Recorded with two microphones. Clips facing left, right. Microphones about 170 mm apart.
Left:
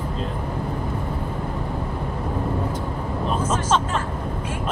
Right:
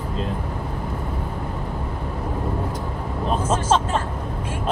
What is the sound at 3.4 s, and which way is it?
Speech, 30° right (ahead or behind).